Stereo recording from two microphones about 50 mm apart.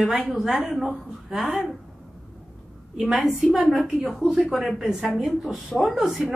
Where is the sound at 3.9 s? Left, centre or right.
Centre.